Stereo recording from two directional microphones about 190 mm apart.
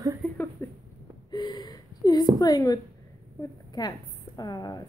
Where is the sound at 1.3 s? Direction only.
20° left (ahead or behind).